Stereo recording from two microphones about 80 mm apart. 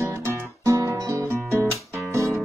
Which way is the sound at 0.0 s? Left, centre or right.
Right.